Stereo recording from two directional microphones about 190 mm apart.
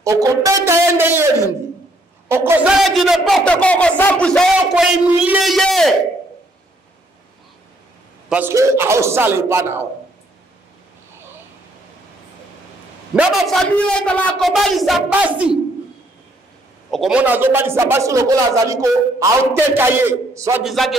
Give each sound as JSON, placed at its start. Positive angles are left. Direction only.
{"t": 0.0, "sound": "a man's voice", "side_deg": -20}
{"t": 2.2, "sound": "a man's voice", "side_deg": -10}
{"t": 2.8, "sound": "a man's voice", "side_deg": 0}
{"t": 8.3, "sound": "a man's voice", "side_deg": -10}
{"t": 13.1, "sound": "a man's voice", "side_deg": 0}
{"t": 16.9, "sound": "a man's voice", "side_deg": -5}
{"t": 20.6, "sound": "a man's voice", "side_deg": 0}